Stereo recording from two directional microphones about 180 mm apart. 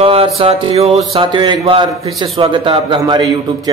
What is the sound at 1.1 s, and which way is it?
A man's voice, 25° right (ahead or behind).